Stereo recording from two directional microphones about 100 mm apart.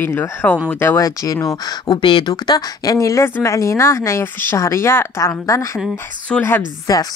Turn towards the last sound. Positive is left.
turn(degrees=35)  # may be behind; listen again after turning